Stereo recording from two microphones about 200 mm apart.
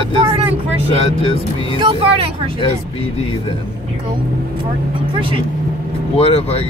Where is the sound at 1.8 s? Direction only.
30° right (ahead or behind).